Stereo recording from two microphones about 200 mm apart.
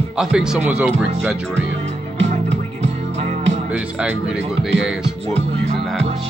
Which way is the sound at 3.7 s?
5° right (ahead or behind).